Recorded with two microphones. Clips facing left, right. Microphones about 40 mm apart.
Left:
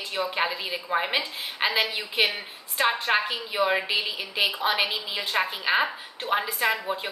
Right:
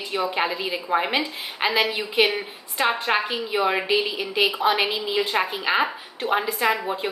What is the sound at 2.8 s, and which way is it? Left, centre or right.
A woman's voice, centre.